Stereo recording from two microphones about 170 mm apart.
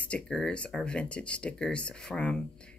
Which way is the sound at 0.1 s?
5° left (ahead or behind).